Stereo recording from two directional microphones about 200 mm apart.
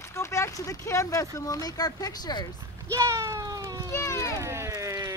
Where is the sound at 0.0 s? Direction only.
15° left (ahead or behind).